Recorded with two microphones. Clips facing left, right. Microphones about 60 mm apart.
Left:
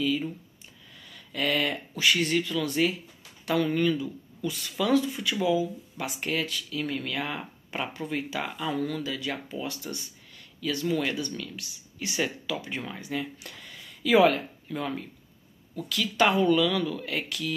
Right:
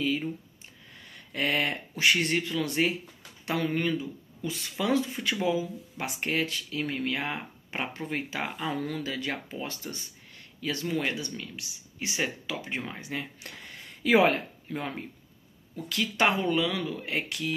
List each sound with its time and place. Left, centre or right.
0.9 s speech: right